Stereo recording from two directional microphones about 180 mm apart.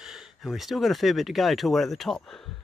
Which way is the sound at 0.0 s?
5° right (ahead or behind).